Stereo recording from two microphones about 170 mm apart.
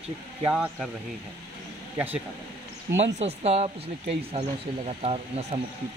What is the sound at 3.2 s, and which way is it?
Speech, 40° right (ahead or behind).